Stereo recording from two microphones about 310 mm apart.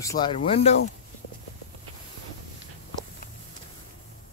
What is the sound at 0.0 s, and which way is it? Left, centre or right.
Speech, centre.